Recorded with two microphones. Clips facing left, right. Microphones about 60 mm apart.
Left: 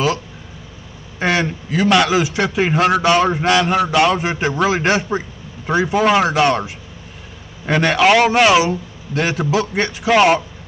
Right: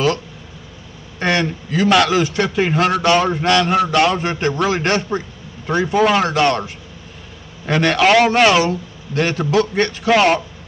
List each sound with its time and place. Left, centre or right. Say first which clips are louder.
1.2 s a man's voice: even; centre